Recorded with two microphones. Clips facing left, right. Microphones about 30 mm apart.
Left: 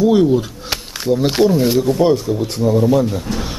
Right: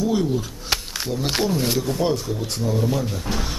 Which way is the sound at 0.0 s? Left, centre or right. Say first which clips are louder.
Left 9 dB; left.